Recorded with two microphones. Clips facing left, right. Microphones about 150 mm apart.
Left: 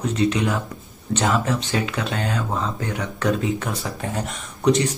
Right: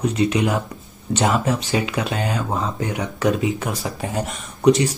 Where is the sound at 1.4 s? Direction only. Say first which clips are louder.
Right 2 dB; 10° right (ahead or behind).